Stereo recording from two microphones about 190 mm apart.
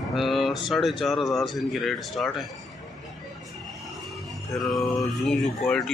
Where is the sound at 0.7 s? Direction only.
Centre (ahead or behind).